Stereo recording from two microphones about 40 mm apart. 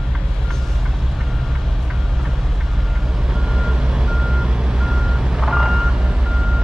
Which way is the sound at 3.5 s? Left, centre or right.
Centre.